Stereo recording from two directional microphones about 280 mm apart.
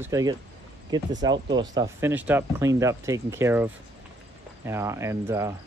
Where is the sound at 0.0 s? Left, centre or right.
Centre.